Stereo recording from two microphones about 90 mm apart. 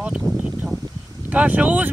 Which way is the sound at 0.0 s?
15° right (ahead or behind).